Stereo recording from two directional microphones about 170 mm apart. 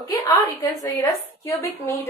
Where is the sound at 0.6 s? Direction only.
15° left (ahead or behind).